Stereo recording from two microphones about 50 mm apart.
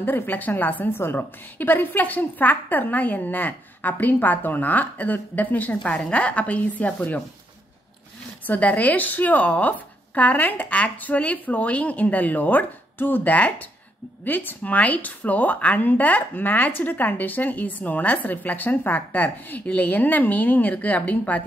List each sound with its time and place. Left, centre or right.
0.0 s a woman's voice: left
8.5 s a woman's voice: left
14.6 s a woman's voice: left